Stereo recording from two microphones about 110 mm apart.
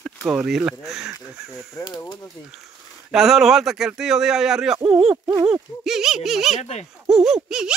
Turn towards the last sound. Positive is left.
turn(degrees=-5)  # may be behind; listen again after turning